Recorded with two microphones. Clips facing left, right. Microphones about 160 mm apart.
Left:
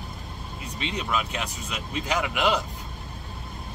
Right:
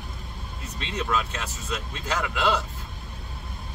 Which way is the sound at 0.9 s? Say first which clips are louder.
Right 2 dB; 15° left (ahead or behind).